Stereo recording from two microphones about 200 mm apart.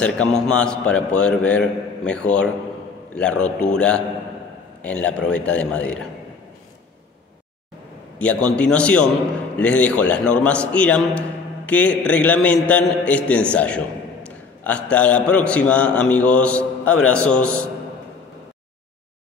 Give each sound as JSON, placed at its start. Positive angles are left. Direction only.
{"t": 0.0, "sound": "a man's voice", "side_deg": 5}
{"t": 8.2, "sound": "a man's voice", "side_deg": 5}